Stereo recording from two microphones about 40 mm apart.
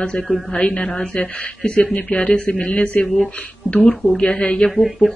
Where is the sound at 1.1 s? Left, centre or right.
Left.